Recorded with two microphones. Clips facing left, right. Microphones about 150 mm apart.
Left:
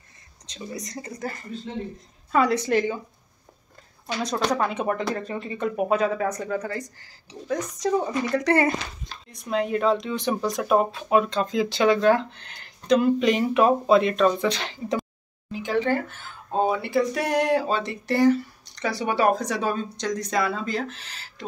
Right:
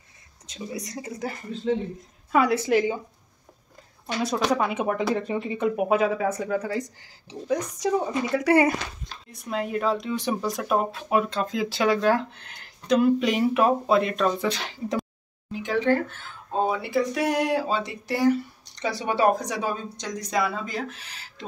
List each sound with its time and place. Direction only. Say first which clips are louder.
0.5 s speech: right 1 dB; 5° right (ahead or behind)
1.7 s speech: right 9 dB; 90° right
2.3 s speech: even; 5° right (ahead or behind)
4.2 s speech: right 1 dB; 5° right (ahead or behind)
18.8 s speech: even; 25° right (ahead or behind)